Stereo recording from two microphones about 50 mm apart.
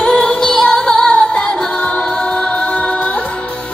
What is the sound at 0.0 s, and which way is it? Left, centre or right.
Music, centre.